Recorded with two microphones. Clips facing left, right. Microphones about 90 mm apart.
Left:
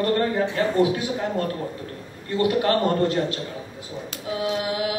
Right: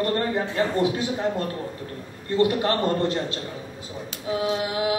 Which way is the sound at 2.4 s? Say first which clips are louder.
Left 1 dB; 25° right (ahead or behind).